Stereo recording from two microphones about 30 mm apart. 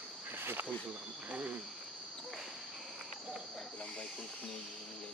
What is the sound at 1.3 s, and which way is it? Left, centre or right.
Speech, right.